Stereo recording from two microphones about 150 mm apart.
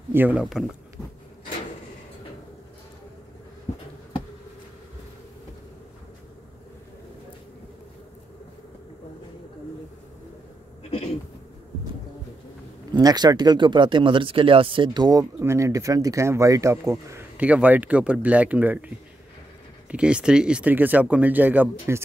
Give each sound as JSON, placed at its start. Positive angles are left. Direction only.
{"t": 0.1, "sound": "speech", "side_deg": -10}
{"t": 12.9, "sound": "speech", "side_deg": -25}
{"t": 19.9, "sound": "speech", "side_deg": -5}